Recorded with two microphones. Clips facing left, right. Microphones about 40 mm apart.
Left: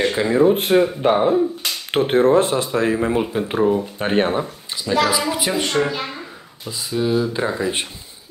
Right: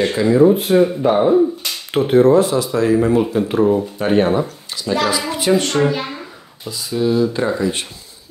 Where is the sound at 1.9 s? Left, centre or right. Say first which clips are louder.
Right 3 dB; left; by 3.7 s centre.